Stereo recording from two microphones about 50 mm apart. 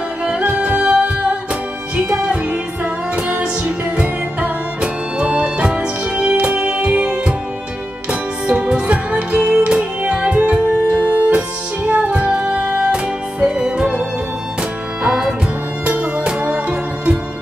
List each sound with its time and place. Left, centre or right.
0.2 s music: right
2.1 s music: right
15.0 s music: centre